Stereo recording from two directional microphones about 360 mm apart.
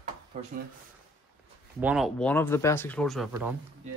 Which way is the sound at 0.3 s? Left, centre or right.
Centre.